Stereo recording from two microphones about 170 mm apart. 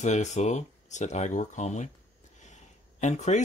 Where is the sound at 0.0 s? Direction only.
45° left (ahead or behind).